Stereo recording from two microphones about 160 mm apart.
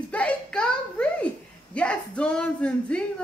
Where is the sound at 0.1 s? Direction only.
5° left (ahead or behind).